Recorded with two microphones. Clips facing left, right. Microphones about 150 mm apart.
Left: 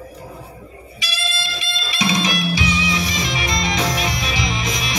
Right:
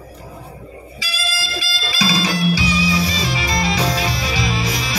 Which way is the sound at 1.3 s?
20° left (ahead or behind).